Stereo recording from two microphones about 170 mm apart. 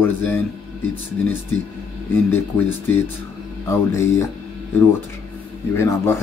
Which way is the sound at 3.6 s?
15° left (ahead or behind).